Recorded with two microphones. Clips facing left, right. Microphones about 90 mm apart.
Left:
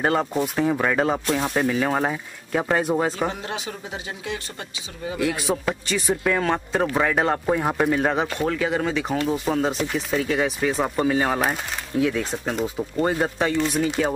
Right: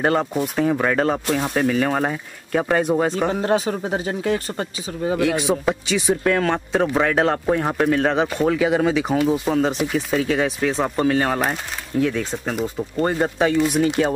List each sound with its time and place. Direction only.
0.0 s speech: centre (ahead or behind)
3.3 s speech: 40° right (ahead or behind)
5.4 s speech: centre (ahead or behind)
13.8 s speech: 20° right (ahead or behind)